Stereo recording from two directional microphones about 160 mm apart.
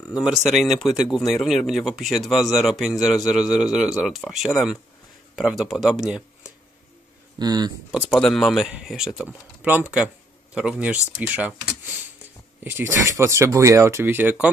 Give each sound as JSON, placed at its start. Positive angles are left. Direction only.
{"t": 0.1, "sound": "speech", "side_deg": -5}
{"t": 7.3, "sound": "speech", "side_deg": -25}
{"t": 8.1, "sound": "speech", "side_deg": 5}